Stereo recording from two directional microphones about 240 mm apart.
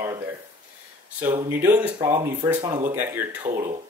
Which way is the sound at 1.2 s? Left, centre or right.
Centre.